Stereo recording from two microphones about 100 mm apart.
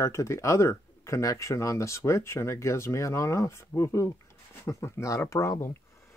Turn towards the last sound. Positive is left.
turn(degrees=30)  # may be behind; listen again after turning